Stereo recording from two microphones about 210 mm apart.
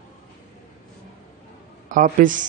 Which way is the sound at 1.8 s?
40° right (ahead or behind).